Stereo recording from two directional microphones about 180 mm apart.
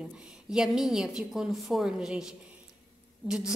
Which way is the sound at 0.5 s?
5° right (ahead or behind).